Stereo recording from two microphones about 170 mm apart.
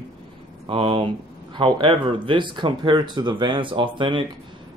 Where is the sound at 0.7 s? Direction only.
35° right (ahead or behind).